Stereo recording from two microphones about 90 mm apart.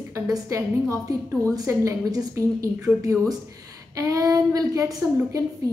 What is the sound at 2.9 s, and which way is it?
Speech, 15° left (ahead or behind).